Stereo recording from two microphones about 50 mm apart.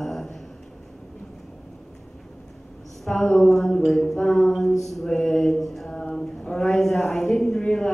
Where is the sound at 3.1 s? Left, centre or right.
Left.